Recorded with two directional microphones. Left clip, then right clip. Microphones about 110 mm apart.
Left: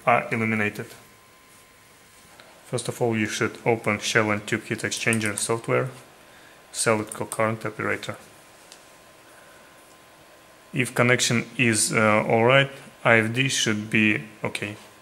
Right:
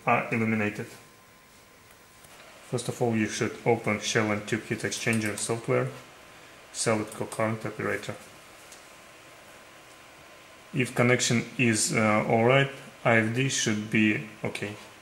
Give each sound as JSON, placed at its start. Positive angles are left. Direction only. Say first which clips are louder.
{"t": 0.0, "sound": "speech", "louder": "left 4 dB", "side_deg": 50}
{"t": 3.0, "sound": "speech", "louder": "left 4 dB", "side_deg": 55}
{"t": 7.3, "sound": "speech", "louder": "left 5 dB", "side_deg": 55}
{"t": 10.7, "sound": "speech", "louder": "left 3 dB", "side_deg": 60}
{"t": 11.9, "sound": "speech", "louder": "left 5 dB", "side_deg": 55}